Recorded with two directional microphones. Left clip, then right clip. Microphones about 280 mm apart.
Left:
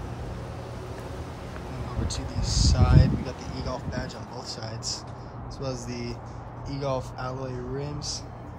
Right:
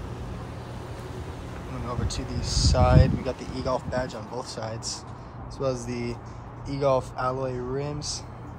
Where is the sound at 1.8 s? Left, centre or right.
Centre.